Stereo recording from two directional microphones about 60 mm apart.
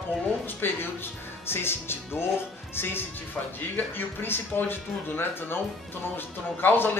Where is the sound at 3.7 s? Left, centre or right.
Left.